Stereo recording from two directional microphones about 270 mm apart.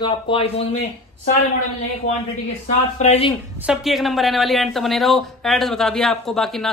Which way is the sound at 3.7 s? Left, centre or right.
Centre.